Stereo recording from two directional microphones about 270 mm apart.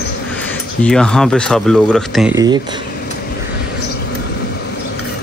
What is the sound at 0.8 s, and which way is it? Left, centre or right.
Speech, centre.